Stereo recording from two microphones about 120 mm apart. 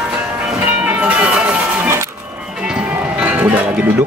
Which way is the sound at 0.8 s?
10° right (ahead or behind).